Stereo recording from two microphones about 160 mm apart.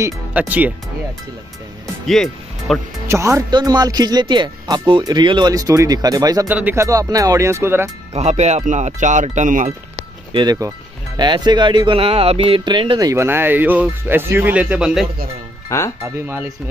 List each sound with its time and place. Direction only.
0.0 s speech: 10° right (ahead or behind)
2.0 s speech: centre (ahead or behind)
3.1 s speech: 15° right (ahead or behind)
8.1 s speech: 45° right (ahead or behind)
10.3 s speech: 25° right (ahead or behind)